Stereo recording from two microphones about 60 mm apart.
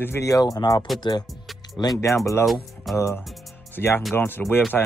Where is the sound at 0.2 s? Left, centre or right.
Left.